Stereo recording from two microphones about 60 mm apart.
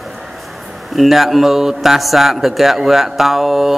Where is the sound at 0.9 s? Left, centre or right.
Centre.